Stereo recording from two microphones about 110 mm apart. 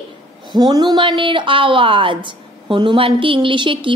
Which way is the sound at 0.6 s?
40° right (ahead or behind).